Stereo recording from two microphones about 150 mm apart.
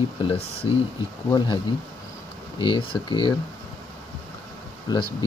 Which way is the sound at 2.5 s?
30° left (ahead or behind).